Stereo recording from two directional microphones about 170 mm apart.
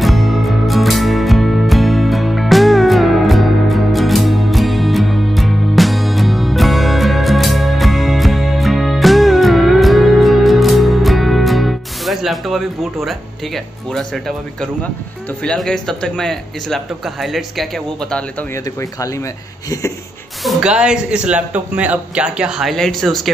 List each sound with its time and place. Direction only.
0.0 s music: centre (ahead or behind)
15.4 s speech: centre (ahead or behind)
18.5 s speech: 20° left (ahead or behind)
20.4 s speech: 5° right (ahead or behind)